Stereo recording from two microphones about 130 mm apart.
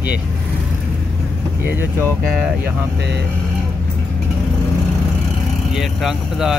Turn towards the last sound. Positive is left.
turn(degrees=-5)  # may be behind; listen again after turning